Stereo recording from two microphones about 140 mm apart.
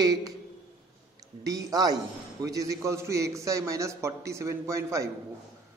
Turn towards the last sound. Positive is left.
turn(degrees=-20)  # may be behind; listen again after turning